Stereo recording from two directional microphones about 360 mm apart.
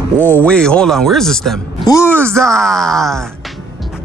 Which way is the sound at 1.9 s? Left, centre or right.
Centre.